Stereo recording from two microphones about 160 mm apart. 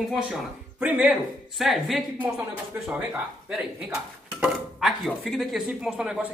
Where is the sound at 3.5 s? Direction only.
5° right (ahead or behind).